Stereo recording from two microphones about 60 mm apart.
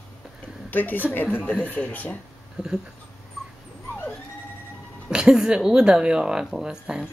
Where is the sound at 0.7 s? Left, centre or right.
Left.